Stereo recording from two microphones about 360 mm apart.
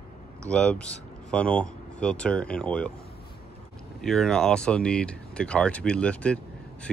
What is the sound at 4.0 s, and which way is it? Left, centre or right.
Speech, centre.